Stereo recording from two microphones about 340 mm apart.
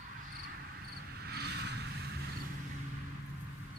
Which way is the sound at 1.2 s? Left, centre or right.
Right.